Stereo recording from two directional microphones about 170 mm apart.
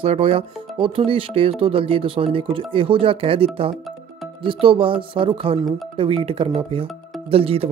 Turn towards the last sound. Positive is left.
turn(degrees=-35)  # may be behind; listen again after turning